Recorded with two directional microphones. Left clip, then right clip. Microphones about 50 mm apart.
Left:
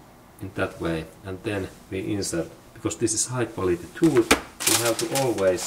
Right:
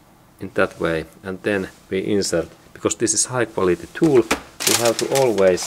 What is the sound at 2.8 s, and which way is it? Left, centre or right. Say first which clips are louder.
Speech: right 6 dB; right.